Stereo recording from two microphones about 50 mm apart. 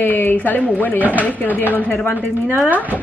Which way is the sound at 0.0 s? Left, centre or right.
Left.